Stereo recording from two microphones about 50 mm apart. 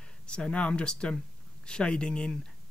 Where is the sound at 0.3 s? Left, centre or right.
Left.